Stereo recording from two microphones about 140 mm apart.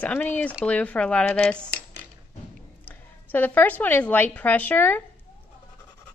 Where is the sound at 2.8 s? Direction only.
15° left (ahead or behind).